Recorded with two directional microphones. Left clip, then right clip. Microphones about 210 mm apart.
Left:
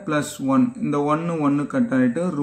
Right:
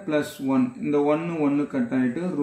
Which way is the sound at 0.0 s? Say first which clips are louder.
Left 1 dB; 45° left (ahead or behind).